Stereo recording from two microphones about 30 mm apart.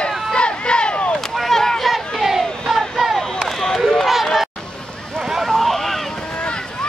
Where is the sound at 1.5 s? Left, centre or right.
Centre.